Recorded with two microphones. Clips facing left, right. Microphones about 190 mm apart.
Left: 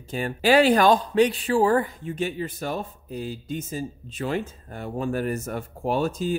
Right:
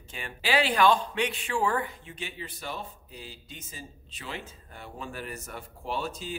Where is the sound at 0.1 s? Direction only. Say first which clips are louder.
Left 9 dB; 45° left (ahead or behind).